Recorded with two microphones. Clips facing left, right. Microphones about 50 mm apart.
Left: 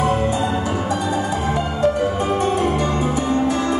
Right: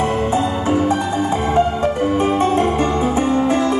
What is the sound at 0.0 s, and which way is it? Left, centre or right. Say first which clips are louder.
Music: right 1 dB; right.